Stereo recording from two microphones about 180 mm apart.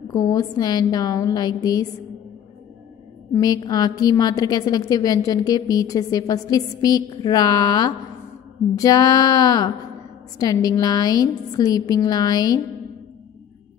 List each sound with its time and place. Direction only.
0.1 s a woman's voice: 20° left (ahead or behind)
3.3 s a woman's voice: 20° left (ahead or behind)